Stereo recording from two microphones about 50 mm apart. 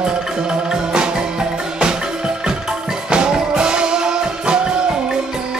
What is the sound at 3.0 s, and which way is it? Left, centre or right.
Music, centre.